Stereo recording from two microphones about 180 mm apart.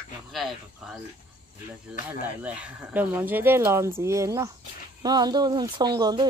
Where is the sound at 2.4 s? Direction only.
5° right (ahead or behind).